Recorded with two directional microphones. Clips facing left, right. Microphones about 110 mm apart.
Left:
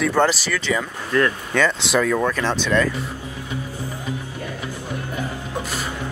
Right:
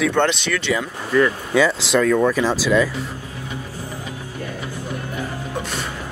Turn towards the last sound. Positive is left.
turn(degrees=0)  # may be behind; listen again after turning